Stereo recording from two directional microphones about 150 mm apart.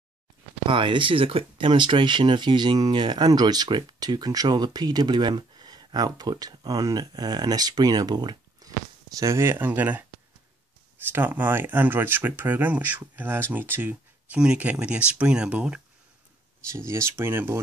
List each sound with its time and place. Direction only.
0.7 s speech: 35° right (ahead or behind); by 10.0 s 10° right (ahead or behind)
11.1 s speech: 15° right (ahead or behind)
16.7 s speech: 20° right (ahead or behind)